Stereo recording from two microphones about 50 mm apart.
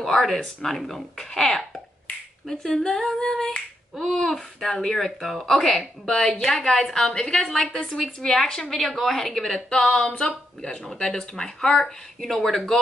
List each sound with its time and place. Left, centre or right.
0.0 s a woman's voice: centre